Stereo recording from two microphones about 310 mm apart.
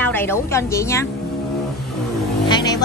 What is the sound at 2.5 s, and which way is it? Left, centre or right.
Vehicle, centre.